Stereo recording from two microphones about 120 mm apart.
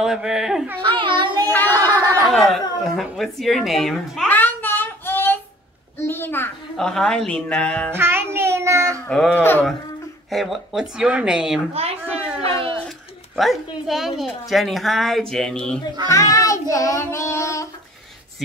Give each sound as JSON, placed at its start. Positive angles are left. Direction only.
{"t": 0.0, "sound": "speech", "side_deg": -5}
{"t": 0.8, "sound": "a sound", "side_deg": -45}
{"t": 1.5, "sound": "a sound", "side_deg": 15}
{"t": 1.9, "sound": "a sound", "side_deg": -35}
{"t": 2.3, "sound": "speech", "side_deg": 0}
{"t": 4.3, "sound": "child singing", "side_deg": 15}
{"t": 5.9, "sound": "a child's voice", "side_deg": 20}
{"t": 6.8, "sound": "speech", "side_deg": 5}
{"t": 7.9, "sound": "child singing", "side_deg": -20}
{"t": 9.0, "sound": "speech", "side_deg": 10}
{"t": 10.3, "sound": "speech", "side_deg": 0}
{"t": 13.4, "sound": "speech", "side_deg": 0}
{"t": 16.1, "sound": "child singing", "side_deg": 25}